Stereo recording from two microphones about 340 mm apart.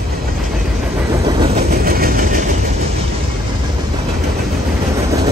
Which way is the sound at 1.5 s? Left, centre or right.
Right.